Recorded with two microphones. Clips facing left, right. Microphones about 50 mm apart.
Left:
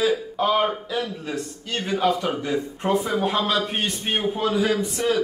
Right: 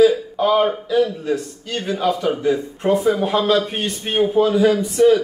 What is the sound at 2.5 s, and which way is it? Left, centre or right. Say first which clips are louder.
A man's voice: right 4 dB; centre.